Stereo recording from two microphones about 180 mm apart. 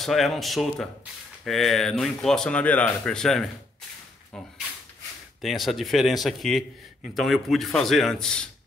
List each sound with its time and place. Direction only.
0.0 s a man's voice: centre (ahead or behind)
5.4 s a man's voice: centre (ahead or behind)